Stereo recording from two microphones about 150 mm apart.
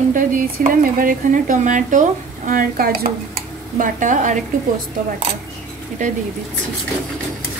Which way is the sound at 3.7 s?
60° right (ahead or behind).